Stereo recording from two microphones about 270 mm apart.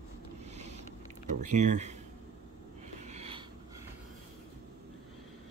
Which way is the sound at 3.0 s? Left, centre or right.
Right.